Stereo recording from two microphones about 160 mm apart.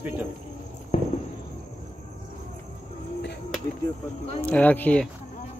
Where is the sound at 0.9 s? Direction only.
50° left (ahead or behind).